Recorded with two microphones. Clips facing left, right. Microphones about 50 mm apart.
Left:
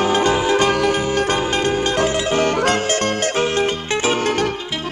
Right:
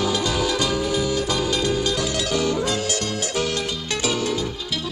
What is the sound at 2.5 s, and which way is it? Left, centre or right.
Music, left.